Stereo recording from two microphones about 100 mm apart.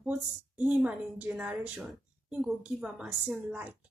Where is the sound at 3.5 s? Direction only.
20° right (ahead or behind).